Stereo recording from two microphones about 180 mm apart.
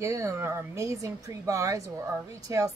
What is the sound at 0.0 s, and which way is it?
Speech, 15° right (ahead or behind).